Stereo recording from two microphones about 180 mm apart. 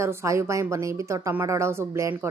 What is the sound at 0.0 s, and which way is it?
Speech, 15° right (ahead or behind).